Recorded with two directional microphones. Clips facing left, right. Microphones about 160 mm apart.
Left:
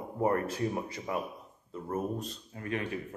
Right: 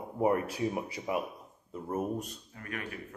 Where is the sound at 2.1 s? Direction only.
25° left (ahead or behind).